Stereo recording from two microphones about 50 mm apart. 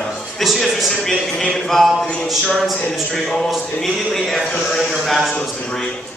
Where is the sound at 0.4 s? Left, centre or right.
Centre.